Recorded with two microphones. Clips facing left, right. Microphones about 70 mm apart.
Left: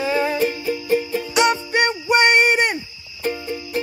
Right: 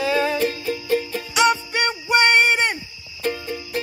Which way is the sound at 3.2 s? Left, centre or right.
Centre.